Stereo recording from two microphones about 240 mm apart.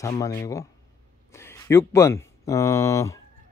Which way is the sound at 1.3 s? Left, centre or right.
Centre.